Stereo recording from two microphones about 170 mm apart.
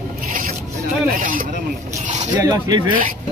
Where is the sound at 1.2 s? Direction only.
55° right (ahead or behind).